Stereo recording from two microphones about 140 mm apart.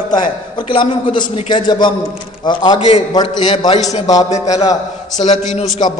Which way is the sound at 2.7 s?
45° left (ahead or behind).